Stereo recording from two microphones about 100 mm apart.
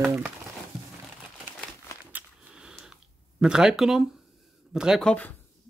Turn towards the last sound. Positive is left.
turn(degrees=15)  # may be behind; listen again after turning